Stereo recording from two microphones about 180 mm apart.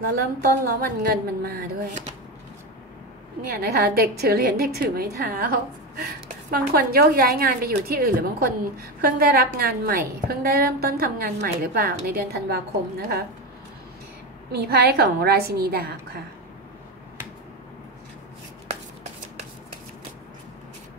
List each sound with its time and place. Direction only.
0.2 s a woman's voice: 55° right (ahead or behind)
3.4 s a woman's voice: 55° right (ahead or behind)
14.5 s a woman's voice: 60° right (ahead or behind)